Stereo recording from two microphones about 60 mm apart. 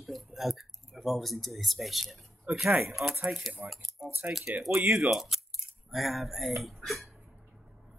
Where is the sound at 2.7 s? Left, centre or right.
Right.